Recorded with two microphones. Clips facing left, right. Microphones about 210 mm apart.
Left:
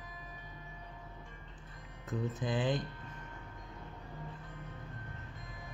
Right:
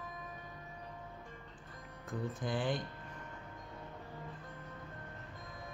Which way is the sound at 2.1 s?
20° left (ahead or behind).